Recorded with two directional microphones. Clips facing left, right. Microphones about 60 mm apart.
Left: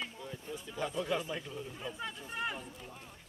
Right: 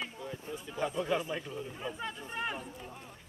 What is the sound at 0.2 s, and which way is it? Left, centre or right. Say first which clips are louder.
Speech: right 2 dB; right.